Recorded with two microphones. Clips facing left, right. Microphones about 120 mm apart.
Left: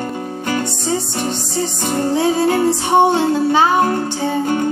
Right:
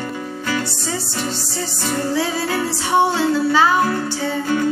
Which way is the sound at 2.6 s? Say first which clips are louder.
Even; 20° left (ahead or behind).